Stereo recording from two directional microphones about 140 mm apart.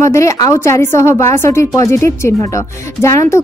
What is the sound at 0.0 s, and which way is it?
A woman's voice, 20° left (ahead or behind).